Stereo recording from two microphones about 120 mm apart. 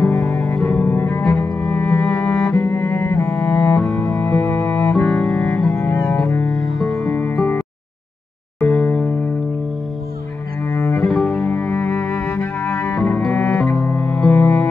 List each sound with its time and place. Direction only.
0.0 s music: 5° left (ahead or behind)
0.6 s cello: 5° left (ahead or behind)
0.9 s cello: 20° left (ahead or behind)
1.6 s music: 5° left (ahead or behind)
2.5 s cello: 15° left (ahead or behind)
4.1 s music: 15° left (ahead or behind)
5.7 s double bass: 20° left (ahead or behind)
6.2 s music: 20° left (ahead or behind)
6.5 s music: centre (ahead or behind)
7.1 s music: 15° left (ahead or behind)
10.7 s bowed string instrument: 15° left (ahead or behind)
11.1 s cello: centre (ahead or behind)
14.0 s music: 5° left (ahead or behind)